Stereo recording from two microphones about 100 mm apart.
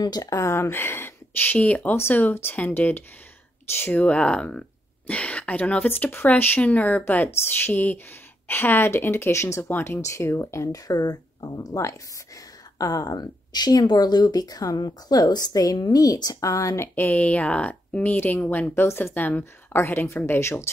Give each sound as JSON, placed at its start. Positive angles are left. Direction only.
{"t": 0.0, "sound": "speech", "side_deg": 40}